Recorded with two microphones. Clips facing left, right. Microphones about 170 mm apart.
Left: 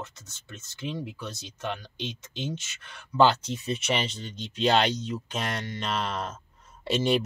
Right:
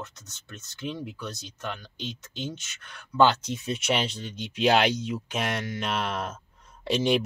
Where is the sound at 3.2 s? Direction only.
Centre (ahead or behind).